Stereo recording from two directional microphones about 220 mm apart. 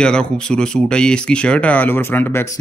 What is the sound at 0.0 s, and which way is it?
A man's voice, 5° left (ahead or behind).